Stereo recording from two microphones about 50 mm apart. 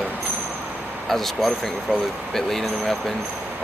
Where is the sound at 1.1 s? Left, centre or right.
Centre.